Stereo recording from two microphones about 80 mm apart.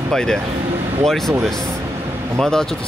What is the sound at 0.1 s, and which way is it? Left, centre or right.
Speech, centre.